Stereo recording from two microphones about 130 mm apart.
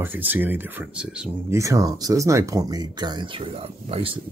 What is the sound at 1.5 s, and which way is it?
Speech, 25° right (ahead or behind).